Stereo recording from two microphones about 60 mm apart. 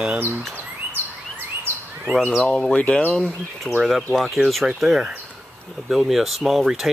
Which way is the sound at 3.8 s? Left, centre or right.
Centre.